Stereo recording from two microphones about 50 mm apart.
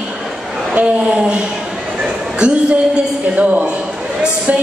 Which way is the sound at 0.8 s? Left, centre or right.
Right.